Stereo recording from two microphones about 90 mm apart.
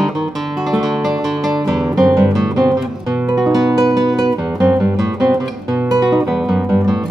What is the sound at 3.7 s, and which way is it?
Music, 40° right (ahead or behind).